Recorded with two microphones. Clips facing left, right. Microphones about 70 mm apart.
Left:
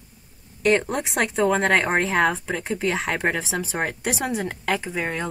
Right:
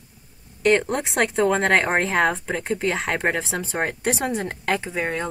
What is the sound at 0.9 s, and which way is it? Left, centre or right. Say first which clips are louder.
Speech: right 2 dB; centre.